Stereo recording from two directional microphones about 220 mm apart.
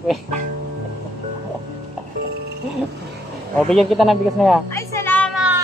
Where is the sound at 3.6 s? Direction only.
Centre (ahead or behind).